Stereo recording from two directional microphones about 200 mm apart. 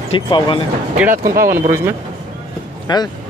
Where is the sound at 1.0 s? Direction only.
10° right (ahead or behind).